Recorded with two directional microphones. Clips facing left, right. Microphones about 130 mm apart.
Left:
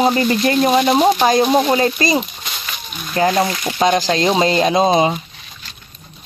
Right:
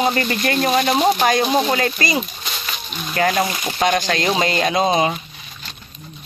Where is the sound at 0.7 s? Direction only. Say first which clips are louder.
Left 3 dB; 10° left (ahead or behind).